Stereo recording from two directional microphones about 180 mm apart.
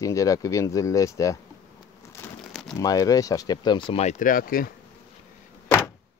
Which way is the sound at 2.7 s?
20° left (ahead or behind).